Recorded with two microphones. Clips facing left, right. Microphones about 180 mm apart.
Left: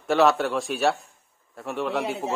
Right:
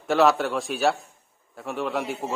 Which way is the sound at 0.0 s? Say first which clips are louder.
Even; centre (ahead or behind).